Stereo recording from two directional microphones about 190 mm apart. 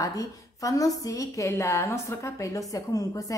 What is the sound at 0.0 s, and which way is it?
A woman's voice, 20° left (ahead or behind).